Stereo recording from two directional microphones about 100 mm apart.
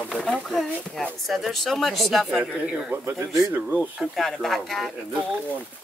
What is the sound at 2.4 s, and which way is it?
Speech, 15° right (ahead or behind).